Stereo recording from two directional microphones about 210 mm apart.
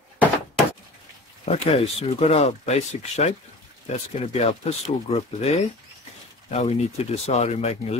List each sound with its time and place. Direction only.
1.4 s speech: 30° left (ahead or behind)